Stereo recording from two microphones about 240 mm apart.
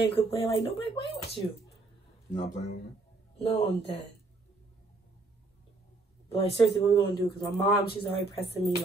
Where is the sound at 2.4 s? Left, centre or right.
Left.